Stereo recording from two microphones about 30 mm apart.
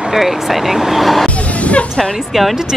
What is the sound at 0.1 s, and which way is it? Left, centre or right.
Speech, centre.